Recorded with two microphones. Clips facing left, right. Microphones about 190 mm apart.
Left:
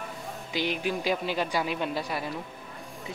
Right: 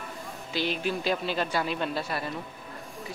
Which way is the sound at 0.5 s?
15° left (ahead or behind).